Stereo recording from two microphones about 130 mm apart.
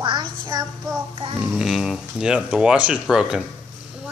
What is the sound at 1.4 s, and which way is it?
Speech, 15° right (ahead or behind).